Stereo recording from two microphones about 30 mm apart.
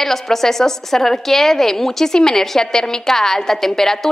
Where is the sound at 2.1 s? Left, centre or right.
Left.